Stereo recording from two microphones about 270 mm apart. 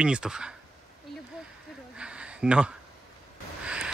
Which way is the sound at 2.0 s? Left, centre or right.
Centre.